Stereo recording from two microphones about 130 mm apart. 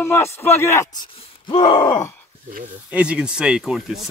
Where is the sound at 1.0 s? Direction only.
40° left (ahead or behind).